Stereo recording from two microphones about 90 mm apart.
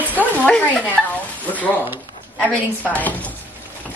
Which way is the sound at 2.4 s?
15° left (ahead or behind).